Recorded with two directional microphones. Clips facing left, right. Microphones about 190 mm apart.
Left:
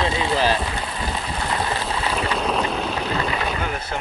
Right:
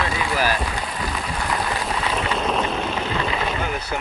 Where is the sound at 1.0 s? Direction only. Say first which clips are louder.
Even; 25° left (ahead or behind).